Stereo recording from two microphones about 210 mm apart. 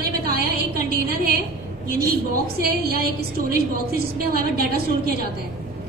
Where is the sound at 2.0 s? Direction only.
45° right (ahead or behind).